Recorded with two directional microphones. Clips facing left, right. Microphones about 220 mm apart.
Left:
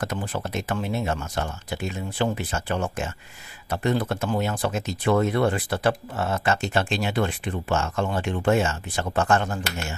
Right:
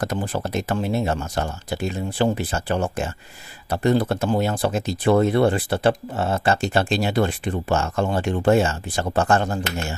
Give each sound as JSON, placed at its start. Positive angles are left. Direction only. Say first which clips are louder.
{"t": 0.0, "sound": "speech", "louder": "right 4 dB", "side_deg": -35}